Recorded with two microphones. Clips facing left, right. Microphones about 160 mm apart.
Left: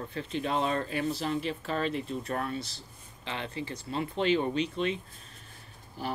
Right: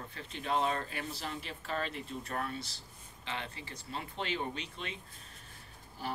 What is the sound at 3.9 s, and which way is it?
Speech, 90° left.